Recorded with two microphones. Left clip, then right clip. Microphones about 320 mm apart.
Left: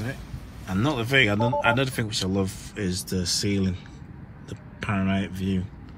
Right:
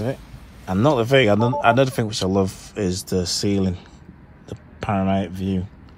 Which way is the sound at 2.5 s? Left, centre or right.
Centre.